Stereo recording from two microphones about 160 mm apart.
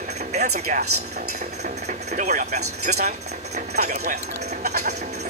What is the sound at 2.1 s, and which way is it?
Speech, 50° right (ahead or behind).